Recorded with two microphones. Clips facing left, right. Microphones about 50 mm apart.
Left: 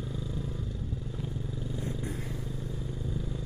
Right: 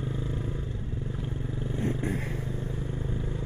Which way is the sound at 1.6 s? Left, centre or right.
Right.